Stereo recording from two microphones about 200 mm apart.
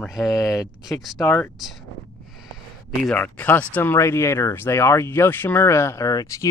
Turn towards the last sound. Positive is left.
turn(degrees=15)  # may be behind; listen again after turning